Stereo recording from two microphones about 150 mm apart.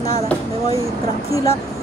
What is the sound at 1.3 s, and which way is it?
Speech, 20° left (ahead or behind).